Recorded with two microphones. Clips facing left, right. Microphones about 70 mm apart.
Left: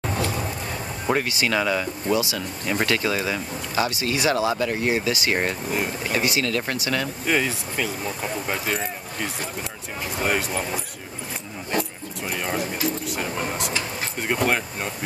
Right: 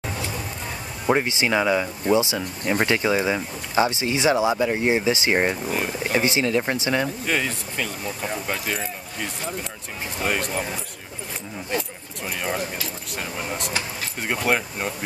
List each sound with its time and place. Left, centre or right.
1.1 s speech: right
7.2 s speech: centre
10.2 s speech: centre
12.3 s speech: centre